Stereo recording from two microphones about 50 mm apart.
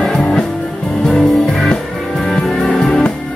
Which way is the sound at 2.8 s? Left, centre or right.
Centre.